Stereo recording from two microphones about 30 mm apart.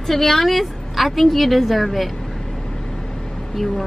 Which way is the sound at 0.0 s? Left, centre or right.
Centre.